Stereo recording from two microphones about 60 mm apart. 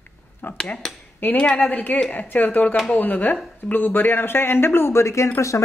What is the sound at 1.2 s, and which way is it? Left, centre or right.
Speech, left.